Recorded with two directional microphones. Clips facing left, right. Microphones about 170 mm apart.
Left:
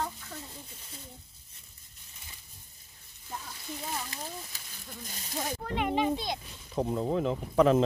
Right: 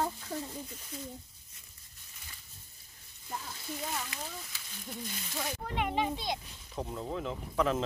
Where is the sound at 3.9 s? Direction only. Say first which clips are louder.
Left 1 dB; 35° left (ahead or behind).